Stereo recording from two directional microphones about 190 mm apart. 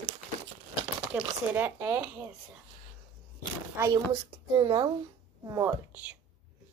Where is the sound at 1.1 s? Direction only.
10° right (ahead or behind).